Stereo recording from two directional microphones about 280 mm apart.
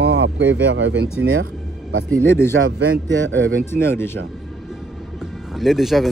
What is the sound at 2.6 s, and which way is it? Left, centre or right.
Speech, right.